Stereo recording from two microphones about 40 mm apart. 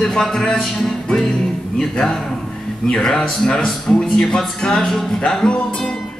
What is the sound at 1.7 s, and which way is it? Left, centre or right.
Speech, centre.